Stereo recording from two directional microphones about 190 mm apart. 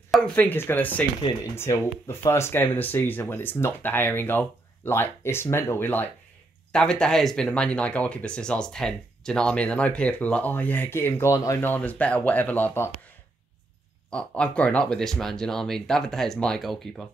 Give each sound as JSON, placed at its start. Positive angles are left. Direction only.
{"t": 0.1, "sound": "speech", "side_deg": 10}
{"t": 14.1, "sound": "speech", "side_deg": 5}